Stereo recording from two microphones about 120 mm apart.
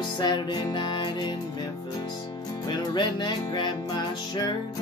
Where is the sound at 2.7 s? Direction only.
40° left (ahead or behind).